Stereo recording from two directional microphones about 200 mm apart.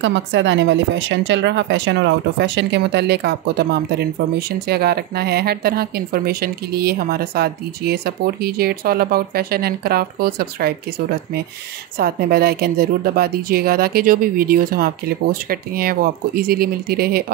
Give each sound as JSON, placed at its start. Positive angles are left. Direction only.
{"t": 0.0, "sound": "a woman's voice", "side_deg": -70}
{"t": 12.0, "sound": "a woman's voice", "side_deg": -50}